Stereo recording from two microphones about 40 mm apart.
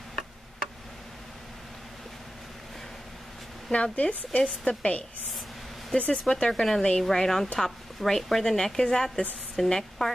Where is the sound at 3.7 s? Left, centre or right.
Left.